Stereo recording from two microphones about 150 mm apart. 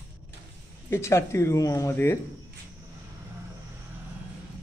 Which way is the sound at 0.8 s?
20° left (ahead or behind).